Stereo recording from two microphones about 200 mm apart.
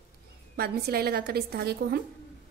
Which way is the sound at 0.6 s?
50° right (ahead or behind).